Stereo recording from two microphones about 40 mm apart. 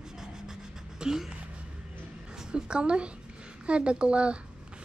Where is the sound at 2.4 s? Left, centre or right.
Centre.